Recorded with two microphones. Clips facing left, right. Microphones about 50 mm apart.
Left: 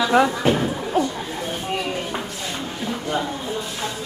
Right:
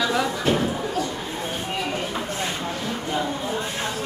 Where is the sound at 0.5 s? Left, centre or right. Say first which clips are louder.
Even; centre.